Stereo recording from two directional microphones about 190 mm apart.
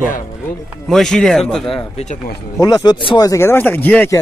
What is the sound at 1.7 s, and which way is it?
Speech, 35° left (ahead or behind).